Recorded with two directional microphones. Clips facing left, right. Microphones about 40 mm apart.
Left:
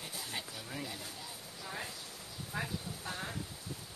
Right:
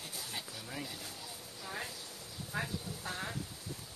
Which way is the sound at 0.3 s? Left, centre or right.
Centre.